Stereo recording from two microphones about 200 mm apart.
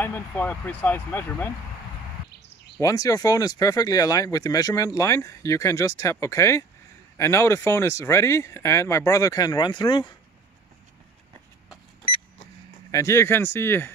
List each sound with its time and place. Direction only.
0.0 s speech: 10° left (ahead or behind)
2.8 s speech: 15° left (ahead or behind)
12.9 s speech: 15° left (ahead or behind)